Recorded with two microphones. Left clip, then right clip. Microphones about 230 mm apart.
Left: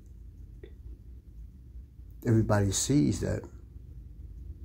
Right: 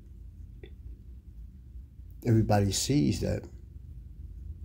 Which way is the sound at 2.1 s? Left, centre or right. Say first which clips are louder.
Right 1 dB; centre.